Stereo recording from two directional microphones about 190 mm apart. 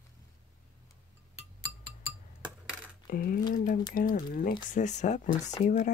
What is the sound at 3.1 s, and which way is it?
Speech, 50° left (ahead or behind).